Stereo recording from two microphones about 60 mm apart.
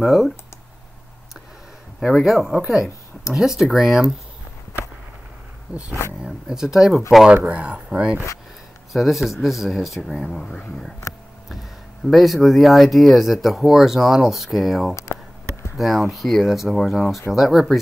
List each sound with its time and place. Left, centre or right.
0.0 s speech: centre
2.0 s speech: centre
5.7 s speech: centre
7.4 s speech: right
8.9 s speech: centre
12.1 s speech: centre